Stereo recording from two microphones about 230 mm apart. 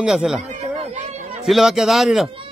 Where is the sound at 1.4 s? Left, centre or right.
Centre.